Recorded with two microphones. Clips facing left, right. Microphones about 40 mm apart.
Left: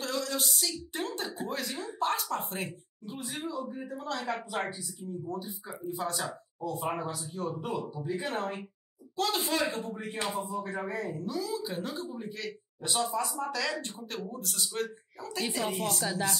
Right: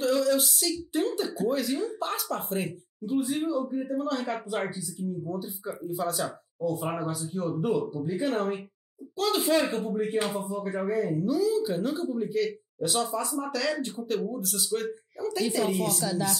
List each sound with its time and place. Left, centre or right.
0.0 s a sound: centre
1.5 s speech: centre
16.0 s speech: left